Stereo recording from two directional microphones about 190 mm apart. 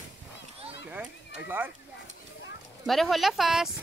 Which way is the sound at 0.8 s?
10° right (ahead or behind).